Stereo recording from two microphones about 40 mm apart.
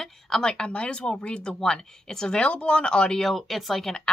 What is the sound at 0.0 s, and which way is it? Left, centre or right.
A woman's voice, centre.